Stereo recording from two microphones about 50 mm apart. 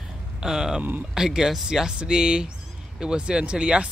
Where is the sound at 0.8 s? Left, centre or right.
Right.